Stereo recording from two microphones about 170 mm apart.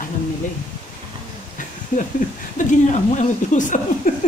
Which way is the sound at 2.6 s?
50° left (ahead or behind).